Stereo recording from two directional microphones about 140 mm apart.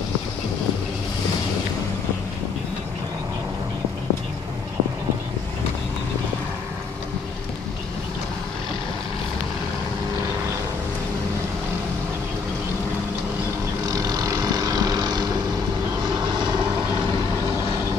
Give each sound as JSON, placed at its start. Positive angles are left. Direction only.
{"t": 13.8, "sound": "vehicle", "side_deg": -25}